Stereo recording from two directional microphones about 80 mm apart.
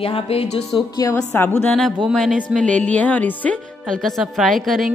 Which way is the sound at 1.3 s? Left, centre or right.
Left.